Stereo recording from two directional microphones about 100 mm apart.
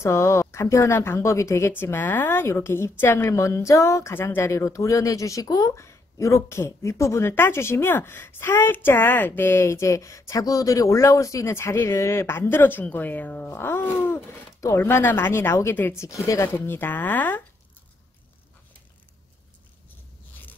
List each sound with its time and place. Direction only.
0.0 s speech: 30° left (ahead or behind)